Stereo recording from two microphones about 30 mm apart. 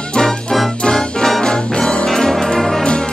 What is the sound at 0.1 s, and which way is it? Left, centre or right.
Music, left.